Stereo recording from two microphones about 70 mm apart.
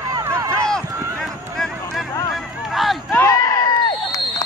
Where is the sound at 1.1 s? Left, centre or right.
Centre.